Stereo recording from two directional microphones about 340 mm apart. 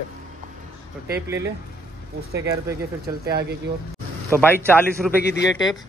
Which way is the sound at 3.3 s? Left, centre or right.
Right.